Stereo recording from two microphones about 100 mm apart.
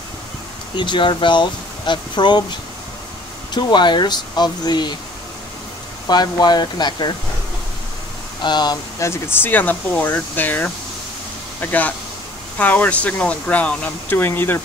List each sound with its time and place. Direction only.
0.7 s speech: 55° left (ahead or behind)
3.5 s speech: 50° left (ahead or behind)
6.0 s speech: 45° left (ahead or behind)
8.4 s speech: 45° left (ahead or behind)
9.0 s speech: 25° left (ahead or behind)